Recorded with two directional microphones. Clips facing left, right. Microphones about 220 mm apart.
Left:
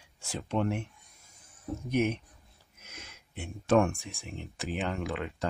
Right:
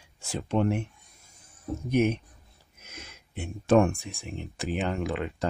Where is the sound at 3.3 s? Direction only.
25° right (ahead or behind).